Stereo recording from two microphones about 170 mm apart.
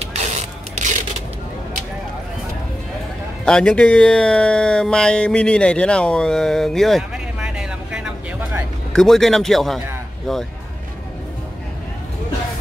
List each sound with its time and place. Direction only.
0.0 s mechanisms: 40° right (ahead or behind)
3.4 s a man's voice: 5° left (ahead or behind)